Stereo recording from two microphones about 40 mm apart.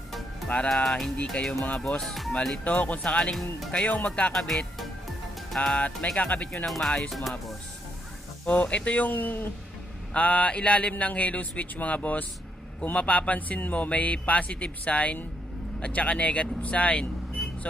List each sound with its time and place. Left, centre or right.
0.5 s speech: left
0.8 s speech: centre
2.0 s speech: centre
2.6 s speech: left
3.0 s speech: left
3.8 s speech: left
4.3 s speech: centre
5.6 s speech: left
6.6 s speech: centre
8.5 s speech: left
9.1 s speech: left
10.1 s speech: left